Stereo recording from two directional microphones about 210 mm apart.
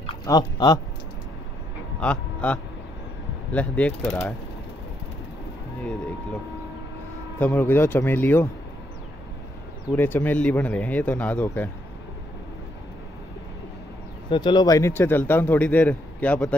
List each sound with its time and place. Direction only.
0.0 s speech: 20° left (ahead or behind)
2.0 s a man's voice: 5° left (ahead or behind)
5.8 s a man's voice: 5° left (ahead or behind)
7.3 s a man's voice: 10° left (ahead or behind)
9.9 s a man's voice: 10° left (ahead or behind)
14.3 s a man's voice: 20° left (ahead or behind)